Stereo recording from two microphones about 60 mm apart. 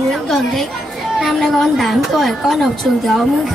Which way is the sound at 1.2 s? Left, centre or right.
Centre.